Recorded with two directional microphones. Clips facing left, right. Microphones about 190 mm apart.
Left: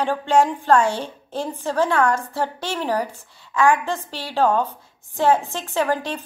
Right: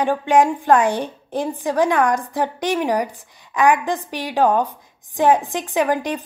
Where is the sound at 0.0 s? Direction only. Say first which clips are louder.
Right 2 dB; 15° right (ahead or behind).